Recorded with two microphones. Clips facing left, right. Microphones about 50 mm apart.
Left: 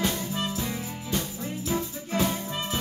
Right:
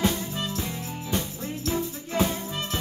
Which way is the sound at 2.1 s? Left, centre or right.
Centre.